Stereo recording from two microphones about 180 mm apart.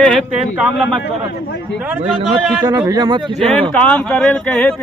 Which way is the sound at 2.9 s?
20° right (ahead or behind).